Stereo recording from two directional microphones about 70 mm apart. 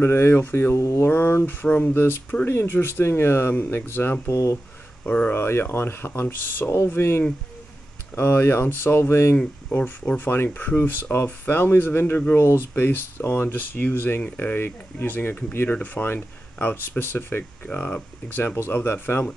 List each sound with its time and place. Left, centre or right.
0.0 s speech: left
0.7 s speech: left
1.0 s speech: left
5.0 s speech: centre
5.3 s speech: left
17.6 s speech: centre
18.6 s speech: left